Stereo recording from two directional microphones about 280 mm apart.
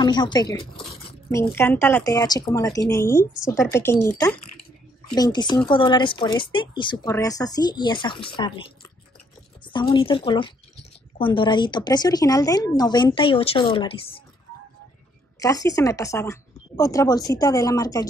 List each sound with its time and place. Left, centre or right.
0.0 s speech: centre
5.1 s speech: centre
9.7 s speech: centre
15.3 s speech: centre